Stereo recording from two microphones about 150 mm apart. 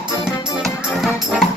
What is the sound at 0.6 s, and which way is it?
Music, 5° right (ahead or behind).